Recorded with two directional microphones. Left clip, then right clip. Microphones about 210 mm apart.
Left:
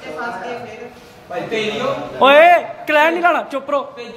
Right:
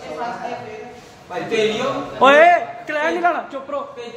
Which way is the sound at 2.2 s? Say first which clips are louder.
Left 2 dB; 10° left (ahead or behind).